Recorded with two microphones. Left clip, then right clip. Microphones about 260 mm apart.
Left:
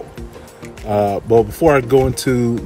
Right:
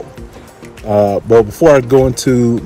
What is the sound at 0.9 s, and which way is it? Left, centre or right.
Speech, right.